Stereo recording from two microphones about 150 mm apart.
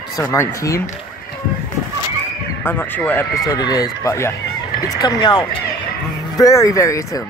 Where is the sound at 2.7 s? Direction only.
15° left (ahead or behind).